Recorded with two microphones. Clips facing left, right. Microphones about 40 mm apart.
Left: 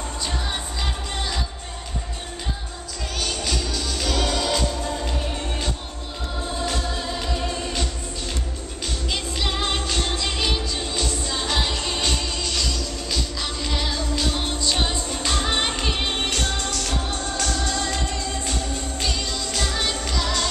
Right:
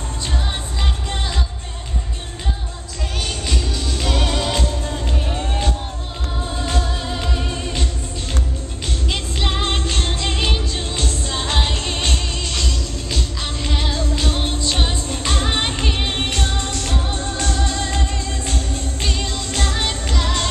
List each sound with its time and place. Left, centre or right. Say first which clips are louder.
3.2 s music: right 1 dB; right
6.6 s music: right 3 dB; centre
9.1 s music: right 2 dB; right
10.6 s music: right 2 dB; right; by 16.1 s centre
16.1 s music: right 2 dB; right